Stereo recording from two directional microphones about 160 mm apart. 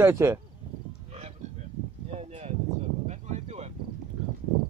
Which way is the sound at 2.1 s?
40° right (ahead or behind).